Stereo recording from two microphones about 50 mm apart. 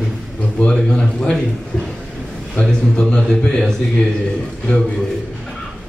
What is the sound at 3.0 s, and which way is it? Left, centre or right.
Speech, centre.